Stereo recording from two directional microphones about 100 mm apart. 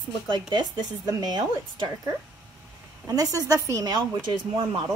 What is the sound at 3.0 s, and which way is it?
Speech, 35° right (ahead or behind).